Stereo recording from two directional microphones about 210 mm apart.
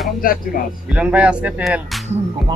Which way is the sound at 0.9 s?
5° right (ahead or behind).